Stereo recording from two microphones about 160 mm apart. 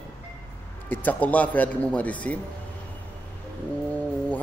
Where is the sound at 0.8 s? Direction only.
10° left (ahead or behind).